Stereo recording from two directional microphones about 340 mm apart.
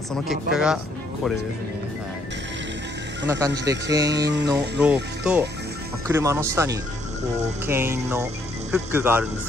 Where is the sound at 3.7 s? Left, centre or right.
Centre.